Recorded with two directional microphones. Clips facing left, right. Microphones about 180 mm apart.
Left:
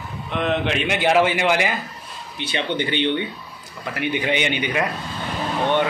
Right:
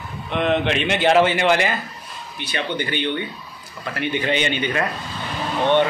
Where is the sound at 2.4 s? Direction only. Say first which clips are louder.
Left 2 dB; 25° left (ahead or behind).